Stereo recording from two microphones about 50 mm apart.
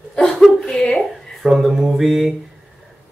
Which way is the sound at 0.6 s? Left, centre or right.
Centre.